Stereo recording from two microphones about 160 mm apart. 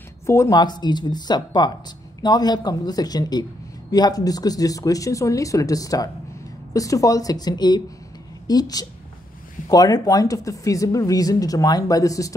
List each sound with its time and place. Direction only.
0.3 s speech: 20° left (ahead or behind)